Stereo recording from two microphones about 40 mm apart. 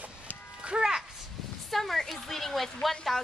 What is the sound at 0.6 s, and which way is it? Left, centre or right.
Speech, right.